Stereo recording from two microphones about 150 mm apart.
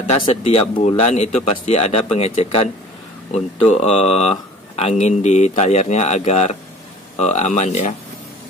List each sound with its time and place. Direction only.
0.0 s speech: 50° left (ahead or behind)